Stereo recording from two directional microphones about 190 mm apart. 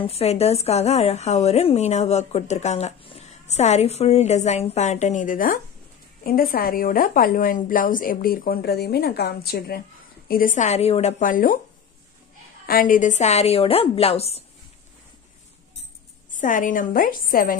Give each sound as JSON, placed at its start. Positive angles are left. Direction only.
{"t": 0.0, "sound": "a woman's voice", "side_deg": 35}
{"t": 12.6, "sound": "a woman's voice", "side_deg": 45}
{"t": 16.3, "sound": "a woman's voice", "side_deg": 45}